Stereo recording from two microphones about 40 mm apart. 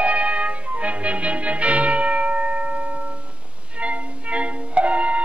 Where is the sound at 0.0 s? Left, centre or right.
Right.